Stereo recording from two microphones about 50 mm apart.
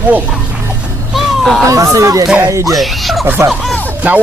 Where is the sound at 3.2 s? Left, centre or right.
Right.